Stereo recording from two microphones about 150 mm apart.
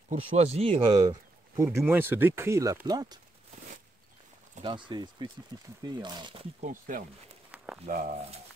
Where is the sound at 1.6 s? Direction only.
20° right (ahead or behind).